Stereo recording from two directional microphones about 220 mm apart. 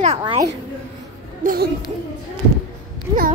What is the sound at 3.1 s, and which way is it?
Speech, 15° right (ahead or behind).